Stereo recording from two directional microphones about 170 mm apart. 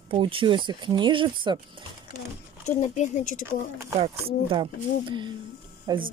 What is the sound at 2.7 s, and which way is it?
Speech, 45° left (ahead or behind).